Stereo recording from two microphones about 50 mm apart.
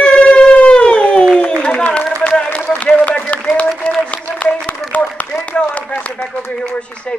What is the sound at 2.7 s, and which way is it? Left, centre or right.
Speech, left.